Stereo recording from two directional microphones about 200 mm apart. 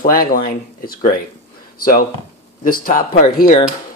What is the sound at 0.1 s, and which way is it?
Speech, 45° left (ahead or behind).